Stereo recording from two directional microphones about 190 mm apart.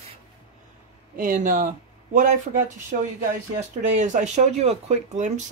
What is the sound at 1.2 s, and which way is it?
Speech, 45° right (ahead or behind).